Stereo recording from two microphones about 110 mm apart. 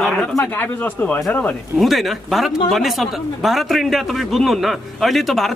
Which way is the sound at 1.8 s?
Centre (ahead or behind).